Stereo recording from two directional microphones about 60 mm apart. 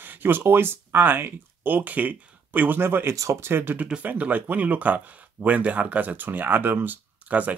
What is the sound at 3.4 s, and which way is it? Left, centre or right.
Speech, right.